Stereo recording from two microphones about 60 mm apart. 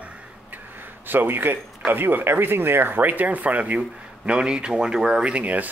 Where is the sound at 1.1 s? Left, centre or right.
Right.